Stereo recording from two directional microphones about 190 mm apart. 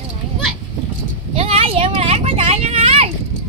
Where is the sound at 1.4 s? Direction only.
30° right (ahead or behind).